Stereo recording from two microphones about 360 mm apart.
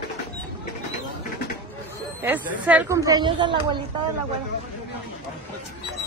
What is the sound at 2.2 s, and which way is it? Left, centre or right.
A woman's voice, centre.